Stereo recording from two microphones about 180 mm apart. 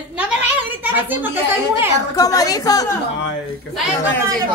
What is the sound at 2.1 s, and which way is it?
Speech, 20° left (ahead or behind).